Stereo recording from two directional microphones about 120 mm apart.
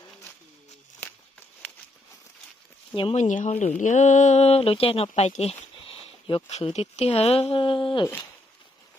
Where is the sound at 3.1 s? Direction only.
85° left; by 5.3 s 60° left (ahead or behind).